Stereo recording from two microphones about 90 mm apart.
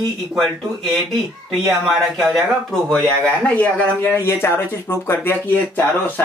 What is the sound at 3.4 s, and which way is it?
Speech, 15° left (ahead or behind).